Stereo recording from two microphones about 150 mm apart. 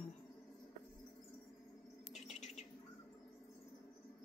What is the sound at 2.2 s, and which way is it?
Bird, 50° left (ahead or behind).